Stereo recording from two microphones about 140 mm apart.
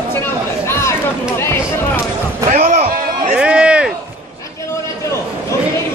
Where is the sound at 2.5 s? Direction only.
60° right (ahead or behind).